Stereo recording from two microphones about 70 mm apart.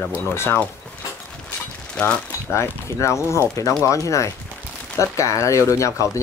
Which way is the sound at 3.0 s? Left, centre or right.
Left.